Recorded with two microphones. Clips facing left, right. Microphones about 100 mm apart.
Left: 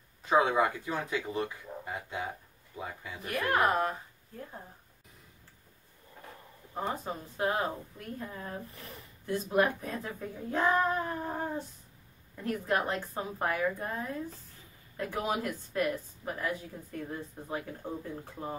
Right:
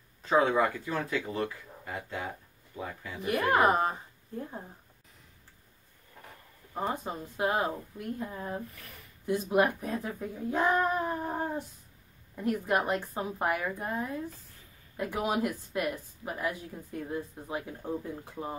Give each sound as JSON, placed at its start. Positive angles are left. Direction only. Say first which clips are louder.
{"t": 0.2, "sound": "speech", "louder": "right 1 dB", "side_deg": 15}
{"t": 3.3, "sound": "speech", "louder": "right 3 dB", "side_deg": -20}
{"t": 6.7, "sound": "speech", "louder": "right 2 dB", "side_deg": -15}
{"t": 8.7, "sound": "speech", "louder": "left 3 dB", "side_deg": 25}
{"t": 9.2, "sound": "speech", "louder": "right 2 dB", "side_deg": -15}